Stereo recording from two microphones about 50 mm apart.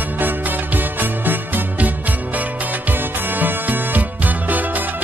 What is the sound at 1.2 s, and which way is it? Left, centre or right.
Music, right.